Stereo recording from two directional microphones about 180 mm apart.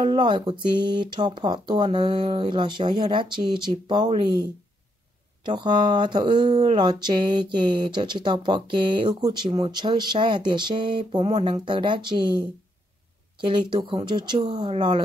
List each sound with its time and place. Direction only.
0.0 s speech: 25° right (ahead or behind)